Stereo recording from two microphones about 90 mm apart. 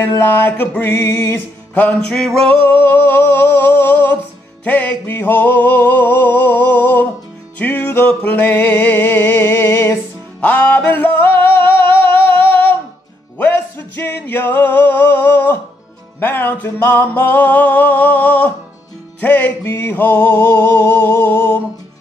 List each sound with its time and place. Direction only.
0.0 s music: 25° left (ahead or behind); by 2.3 s 10° left (ahead or behind)
2.7 s a sound: 20° left (ahead or behind)
4.6 s music: 20° left (ahead or behind)
10.4 s music: 15° left (ahead or behind)